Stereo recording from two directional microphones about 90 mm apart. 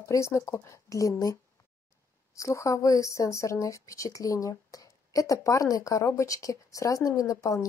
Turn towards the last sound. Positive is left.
turn(degrees=35)  # may be behind; listen again after turning